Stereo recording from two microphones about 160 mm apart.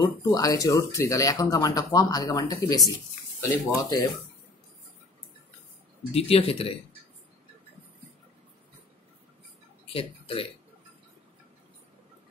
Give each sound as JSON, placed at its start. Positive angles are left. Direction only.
{"t": 0.0, "sound": "speech", "side_deg": 25}
{"t": 6.1, "sound": "speech", "side_deg": 35}
{"t": 9.9, "sound": "speech", "side_deg": 35}